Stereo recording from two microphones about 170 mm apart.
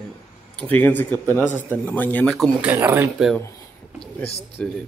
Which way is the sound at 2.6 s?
10° right (ahead or behind).